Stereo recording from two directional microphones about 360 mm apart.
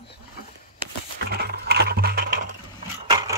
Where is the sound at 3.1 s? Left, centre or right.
Centre.